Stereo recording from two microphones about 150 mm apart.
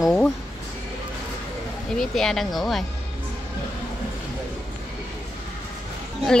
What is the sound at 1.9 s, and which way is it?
Speech, centre (ahead or behind).